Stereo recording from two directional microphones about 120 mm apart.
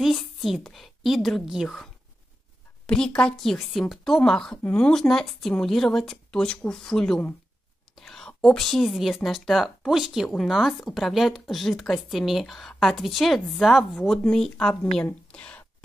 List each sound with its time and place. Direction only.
0.0 s a woman's voice: centre (ahead or behind)
2.9 s a woman's voice: 10° left (ahead or behind)